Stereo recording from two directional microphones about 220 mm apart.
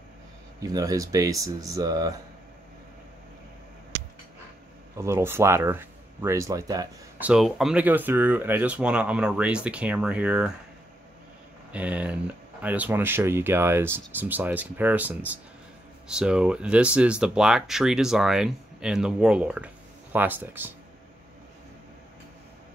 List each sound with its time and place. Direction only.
0.6 s speech: 15° right (ahead or behind)
4.9 s speech: 10° right (ahead or behind)
7.2 s speech: centre (ahead or behind)
11.7 s speech: 5° right (ahead or behind)